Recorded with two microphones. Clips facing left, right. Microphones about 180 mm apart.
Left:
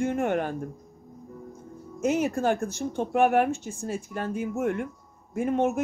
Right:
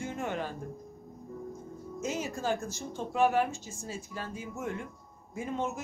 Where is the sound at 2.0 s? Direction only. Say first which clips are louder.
Left 10 dB; 60° left (ahead or behind).